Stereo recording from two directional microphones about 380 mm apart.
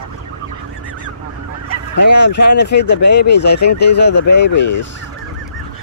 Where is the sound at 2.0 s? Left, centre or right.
Left.